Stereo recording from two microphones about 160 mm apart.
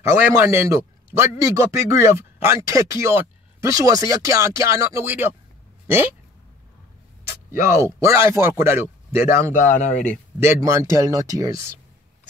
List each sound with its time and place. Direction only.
0.1 s a man's voice: 15° right (ahead or behind)
7.7 s a man's voice: 20° right (ahead or behind)
9.5 s speech: 50° left (ahead or behind)
10.4 s speech: 15° right (ahead or behind)